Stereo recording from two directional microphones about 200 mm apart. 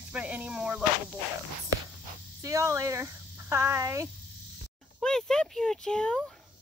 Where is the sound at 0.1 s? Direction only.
5° right (ahead or behind).